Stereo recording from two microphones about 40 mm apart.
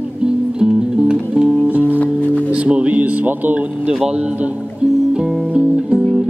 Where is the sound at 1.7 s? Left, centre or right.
Right.